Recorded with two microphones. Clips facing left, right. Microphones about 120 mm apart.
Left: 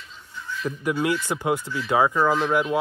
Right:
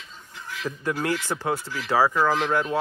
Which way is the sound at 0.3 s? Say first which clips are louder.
Left 3 dB; 90° right.